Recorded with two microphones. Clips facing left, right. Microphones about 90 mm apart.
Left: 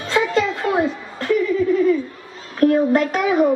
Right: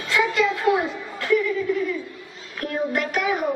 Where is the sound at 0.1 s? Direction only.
35° left (ahead or behind).